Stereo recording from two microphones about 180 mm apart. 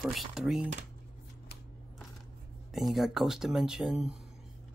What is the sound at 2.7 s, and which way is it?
Speech, centre (ahead or behind).